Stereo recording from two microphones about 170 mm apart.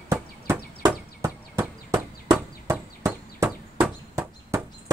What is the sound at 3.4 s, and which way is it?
Knock, 10° right (ahead or behind).